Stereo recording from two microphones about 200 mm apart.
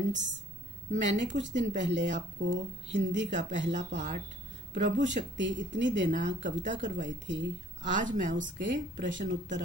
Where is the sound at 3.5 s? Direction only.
65° right (ahead or behind).